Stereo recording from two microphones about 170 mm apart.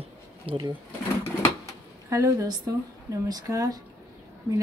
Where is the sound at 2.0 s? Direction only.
20° right (ahead or behind).